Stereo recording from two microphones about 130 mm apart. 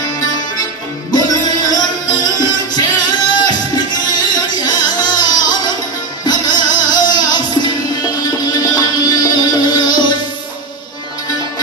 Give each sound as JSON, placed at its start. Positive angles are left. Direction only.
{"t": 1.1, "sound": "music", "side_deg": 30}